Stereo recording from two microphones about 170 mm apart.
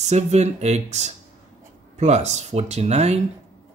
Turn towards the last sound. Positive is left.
turn(degrees=-40)  # may be behind; listen again after turning